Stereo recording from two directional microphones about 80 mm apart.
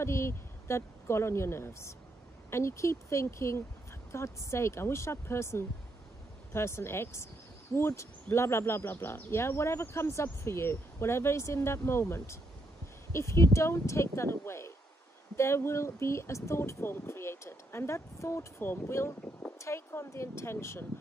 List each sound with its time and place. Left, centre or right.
0.0 s speech: left